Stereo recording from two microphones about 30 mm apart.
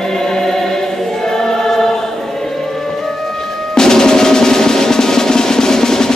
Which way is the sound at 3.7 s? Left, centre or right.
Centre.